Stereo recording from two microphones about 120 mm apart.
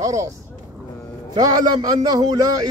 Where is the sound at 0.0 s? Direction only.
25° right (ahead or behind).